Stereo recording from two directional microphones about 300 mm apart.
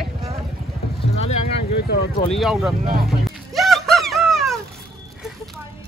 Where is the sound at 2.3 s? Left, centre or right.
Centre.